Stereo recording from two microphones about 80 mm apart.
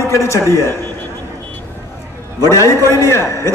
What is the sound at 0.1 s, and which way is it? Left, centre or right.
Speech, left.